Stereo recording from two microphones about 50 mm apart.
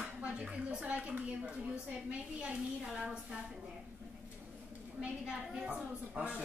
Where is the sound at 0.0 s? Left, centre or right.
Right.